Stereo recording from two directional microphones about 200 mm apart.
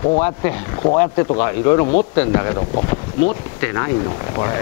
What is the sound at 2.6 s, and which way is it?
Speech, 35° left (ahead or behind).